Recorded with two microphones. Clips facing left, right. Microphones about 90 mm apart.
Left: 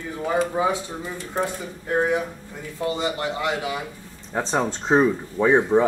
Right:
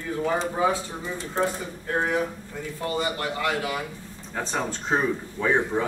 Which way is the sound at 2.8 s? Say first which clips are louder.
Left 3 dB; 20° left (ahead or behind).